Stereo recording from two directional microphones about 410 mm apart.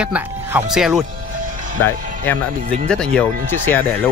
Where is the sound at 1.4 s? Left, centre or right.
Centre.